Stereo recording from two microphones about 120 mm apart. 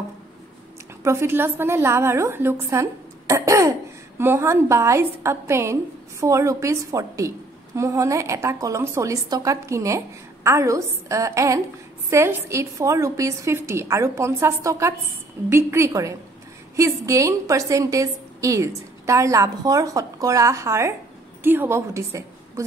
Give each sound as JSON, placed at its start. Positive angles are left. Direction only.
{"t": 1.0, "sound": "a woman's voice", "side_deg": -20}